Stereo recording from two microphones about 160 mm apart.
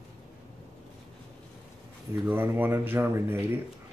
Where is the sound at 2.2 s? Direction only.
10° right (ahead or behind).